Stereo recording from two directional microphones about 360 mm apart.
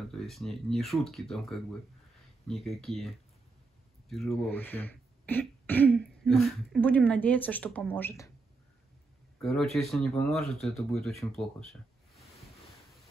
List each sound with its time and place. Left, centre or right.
0.1 s speech: centre
9.4 s speech: centre